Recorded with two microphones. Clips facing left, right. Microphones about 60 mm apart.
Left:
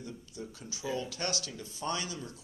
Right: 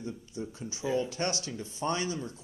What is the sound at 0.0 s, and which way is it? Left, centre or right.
Speech, right.